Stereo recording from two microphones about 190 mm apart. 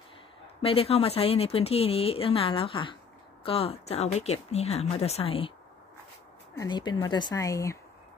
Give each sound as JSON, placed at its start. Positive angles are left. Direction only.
{"t": 0.6, "sound": "speech", "side_deg": 30}
{"t": 6.6, "sound": "speech", "side_deg": 25}